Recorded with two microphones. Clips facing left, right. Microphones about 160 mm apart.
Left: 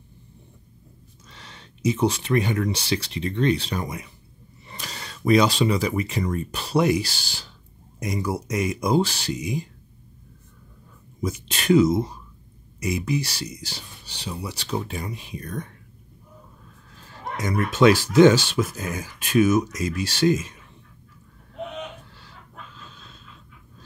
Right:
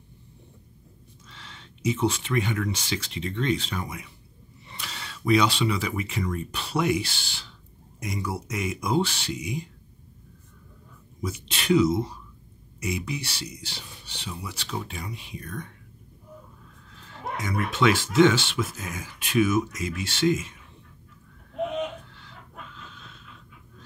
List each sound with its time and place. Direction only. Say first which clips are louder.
1.3 s speech: left 2 dB; 40° left (ahead or behind)
11.1 s speech: left 4 dB; 45° left (ahead or behind)
16.9 s speech: even; 40° left (ahead or behind)